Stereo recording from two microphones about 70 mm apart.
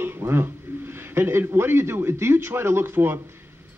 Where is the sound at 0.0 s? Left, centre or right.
Right.